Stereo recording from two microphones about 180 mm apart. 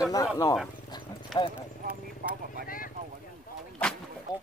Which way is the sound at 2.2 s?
55° right (ahead or behind).